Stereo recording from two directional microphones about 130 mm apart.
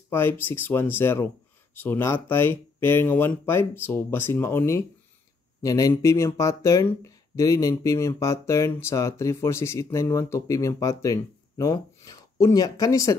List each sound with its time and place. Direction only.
0.1 s speech: 15° left (ahead or behind)